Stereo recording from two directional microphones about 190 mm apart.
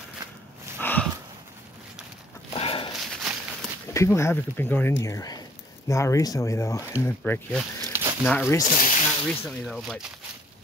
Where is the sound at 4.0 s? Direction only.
15° left (ahead or behind).